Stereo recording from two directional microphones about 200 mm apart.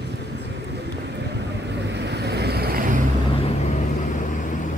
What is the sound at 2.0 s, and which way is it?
Vehicle, 55° right (ahead or behind).